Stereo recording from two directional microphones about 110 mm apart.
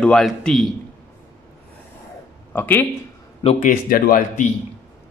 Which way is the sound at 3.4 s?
60° left (ahead or behind).